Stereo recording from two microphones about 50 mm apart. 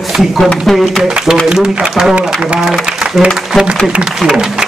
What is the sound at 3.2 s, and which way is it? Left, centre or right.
Speech, centre.